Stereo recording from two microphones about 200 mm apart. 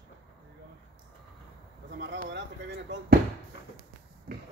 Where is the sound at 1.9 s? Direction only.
60° right (ahead or behind).